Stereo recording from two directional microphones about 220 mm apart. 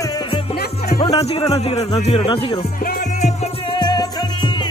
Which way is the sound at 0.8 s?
30° left (ahead or behind).